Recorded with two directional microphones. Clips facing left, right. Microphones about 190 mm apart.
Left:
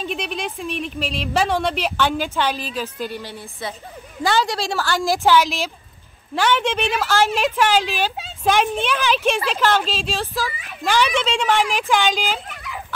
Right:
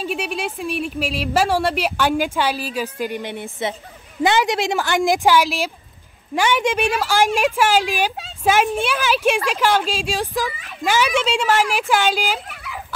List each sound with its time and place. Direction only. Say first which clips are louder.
0.0 s speech: right 2 dB; 10° right (ahead or behind)